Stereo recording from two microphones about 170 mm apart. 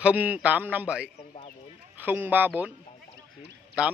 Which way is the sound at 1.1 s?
40° left (ahead or behind).